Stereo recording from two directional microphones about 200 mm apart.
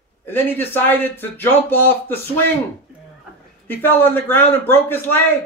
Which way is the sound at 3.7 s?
10° left (ahead or behind).